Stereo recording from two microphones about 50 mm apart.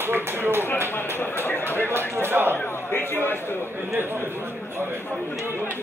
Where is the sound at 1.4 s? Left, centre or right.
Left.